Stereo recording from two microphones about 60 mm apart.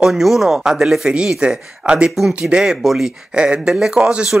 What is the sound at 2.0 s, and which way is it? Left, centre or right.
Speech, centre.